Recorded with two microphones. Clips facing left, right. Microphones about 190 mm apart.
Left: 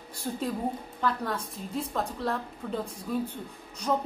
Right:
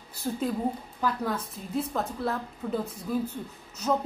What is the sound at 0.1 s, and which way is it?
A woman's voice, 5° right (ahead or behind).